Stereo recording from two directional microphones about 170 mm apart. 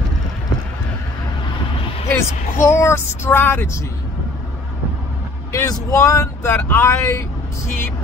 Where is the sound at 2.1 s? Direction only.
15° left (ahead or behind).